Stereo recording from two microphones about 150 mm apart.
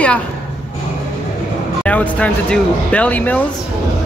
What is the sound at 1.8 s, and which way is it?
Speech, 10° left (ahead or behind).